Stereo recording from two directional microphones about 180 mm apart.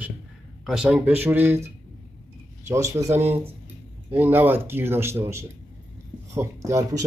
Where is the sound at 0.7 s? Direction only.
5° right (ahead or behind).